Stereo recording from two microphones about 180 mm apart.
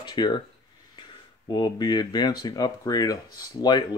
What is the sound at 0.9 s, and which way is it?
Speech, 25° left (ahead or behind).